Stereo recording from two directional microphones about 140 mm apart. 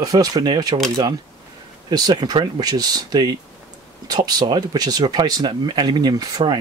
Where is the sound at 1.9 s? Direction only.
30° right (ahead or behind).